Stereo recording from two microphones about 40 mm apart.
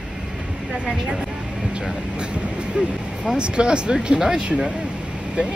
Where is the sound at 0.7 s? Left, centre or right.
Right.